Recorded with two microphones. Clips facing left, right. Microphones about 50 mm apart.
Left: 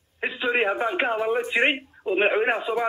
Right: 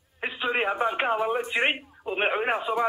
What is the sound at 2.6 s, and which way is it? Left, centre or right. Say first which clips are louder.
Speech: even; centre.